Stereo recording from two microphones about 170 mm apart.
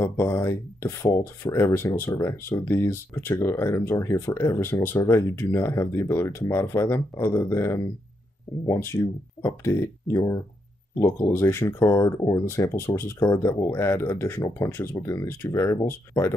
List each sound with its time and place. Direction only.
0.0 s speech: 15° left (ahead or behind)